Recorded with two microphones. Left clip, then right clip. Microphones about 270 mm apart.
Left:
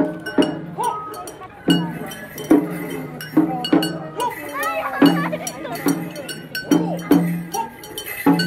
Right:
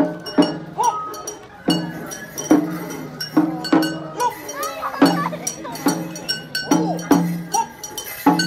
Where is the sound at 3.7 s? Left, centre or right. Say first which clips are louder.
Right 1 dB; right.